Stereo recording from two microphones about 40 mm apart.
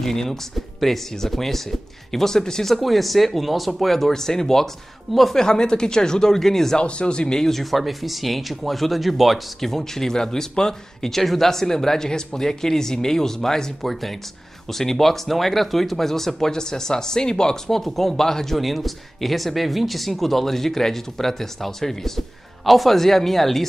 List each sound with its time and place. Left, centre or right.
0.0 s speech: centre
6.8 s speech: left
7.7 s speech: centre